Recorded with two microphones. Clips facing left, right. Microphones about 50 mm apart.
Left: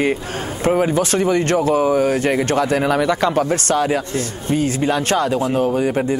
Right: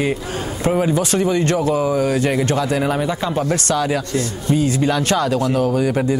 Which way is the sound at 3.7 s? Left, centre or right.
Left.